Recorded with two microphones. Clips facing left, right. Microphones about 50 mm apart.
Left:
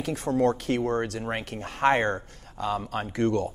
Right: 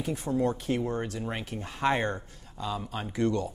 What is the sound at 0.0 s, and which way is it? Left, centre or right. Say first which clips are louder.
Speech: left 4 dB; left.